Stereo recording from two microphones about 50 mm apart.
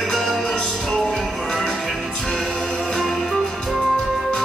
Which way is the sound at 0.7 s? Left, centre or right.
Centre.